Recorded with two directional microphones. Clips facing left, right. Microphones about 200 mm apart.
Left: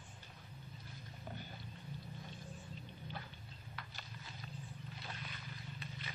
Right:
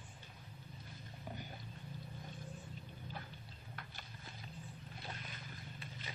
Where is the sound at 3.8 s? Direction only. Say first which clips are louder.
Left 2 dB; 50° right (ahead or behind).